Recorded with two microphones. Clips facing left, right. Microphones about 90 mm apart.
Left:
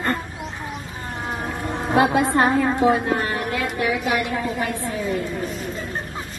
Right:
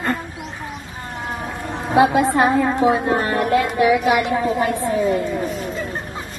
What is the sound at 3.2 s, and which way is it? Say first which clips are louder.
Music: right 7 dB; 35° right (ahead or behind).